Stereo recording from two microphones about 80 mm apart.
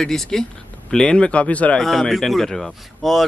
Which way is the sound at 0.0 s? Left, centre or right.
Centre.